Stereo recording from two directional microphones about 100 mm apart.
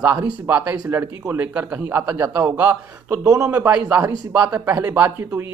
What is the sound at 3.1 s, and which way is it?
Speech, 30° right (ahead or behind).